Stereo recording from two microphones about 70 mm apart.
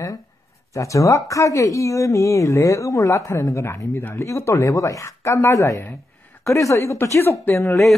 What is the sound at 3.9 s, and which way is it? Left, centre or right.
Speech, left.